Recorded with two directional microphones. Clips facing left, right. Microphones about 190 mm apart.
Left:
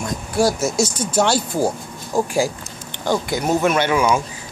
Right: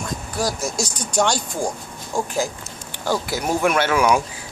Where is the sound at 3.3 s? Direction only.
5° right (ahead or behind).